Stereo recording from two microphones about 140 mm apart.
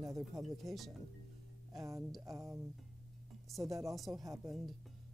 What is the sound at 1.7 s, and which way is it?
Speech, 20° right (ahead or behind).